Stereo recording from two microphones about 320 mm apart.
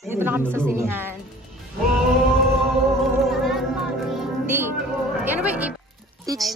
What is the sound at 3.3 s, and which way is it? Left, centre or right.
Music, centre.